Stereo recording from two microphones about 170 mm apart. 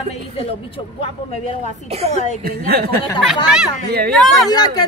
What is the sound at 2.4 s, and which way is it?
Speech, 60° right (ahead or behind).